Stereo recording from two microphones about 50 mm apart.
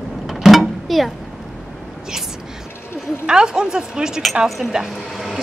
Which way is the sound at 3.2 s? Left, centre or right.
Centre.